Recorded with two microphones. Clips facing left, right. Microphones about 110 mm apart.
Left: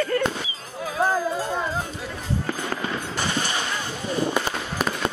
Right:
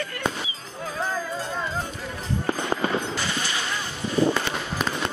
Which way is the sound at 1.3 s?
15° left (ahead or behind).